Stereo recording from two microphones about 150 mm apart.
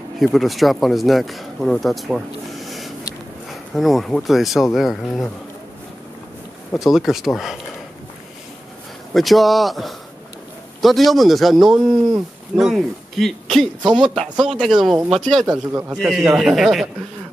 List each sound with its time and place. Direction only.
0.2 s speech: centre (ahead or behind)
6.7 s speech: centre (ahead or behind)
9.1 s speech: centre (ahead or behind)
15.4 s speech: 25° right (ahead or behind)
15.9 s speech: 5° right (ahead or behind)